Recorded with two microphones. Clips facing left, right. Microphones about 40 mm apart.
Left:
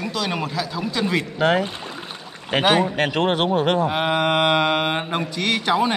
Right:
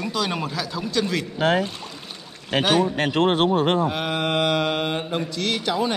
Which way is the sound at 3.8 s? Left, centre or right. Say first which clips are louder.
Left 4 dB; left.